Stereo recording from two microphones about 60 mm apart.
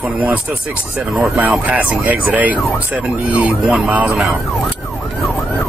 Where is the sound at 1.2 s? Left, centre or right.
Right.